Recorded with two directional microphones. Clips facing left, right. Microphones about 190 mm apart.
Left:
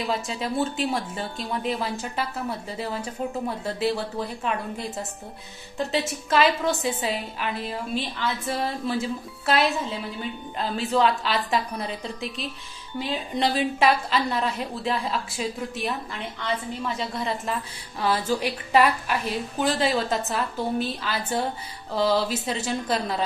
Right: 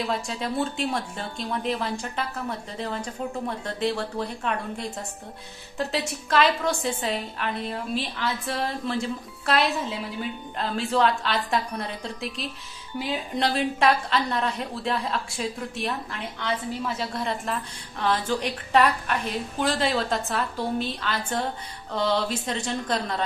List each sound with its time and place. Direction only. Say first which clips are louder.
0.0 s a woman's voice: left 1 dB; centre (ahead or behind)